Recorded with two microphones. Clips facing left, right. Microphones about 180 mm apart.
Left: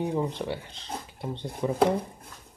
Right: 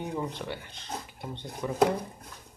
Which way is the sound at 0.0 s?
30° left (ahead or behind).